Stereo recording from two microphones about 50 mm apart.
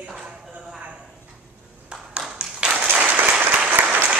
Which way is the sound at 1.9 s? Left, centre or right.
Centre.